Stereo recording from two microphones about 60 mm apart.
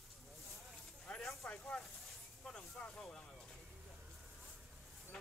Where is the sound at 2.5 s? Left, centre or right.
Centre.